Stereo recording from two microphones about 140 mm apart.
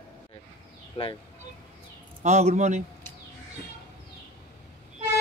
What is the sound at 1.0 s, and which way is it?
Speech, 40° left (ahead or behind).